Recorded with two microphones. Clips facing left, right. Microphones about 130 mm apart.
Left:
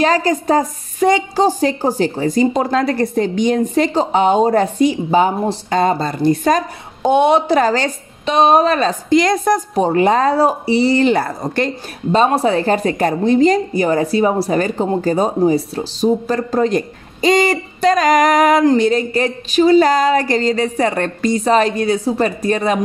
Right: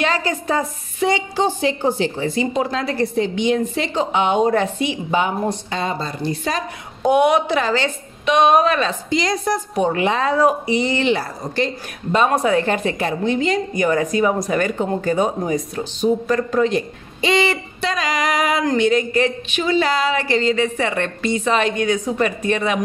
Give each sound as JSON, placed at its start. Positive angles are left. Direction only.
{"t": 0.0, "sound": "a woman's voice", "side_deg": 40}
{"t": 7.0, "sound": "a woman's voice", "side_deg": 25}
{"t": 9.8, "sound": "a woman's voice", "side_deg": 35}
{"t": 12.1, "sound": "a woman's voice", "side_deg": 30}
{"t": 18.6, "sound": "a woman's voice", "side_deg": 35}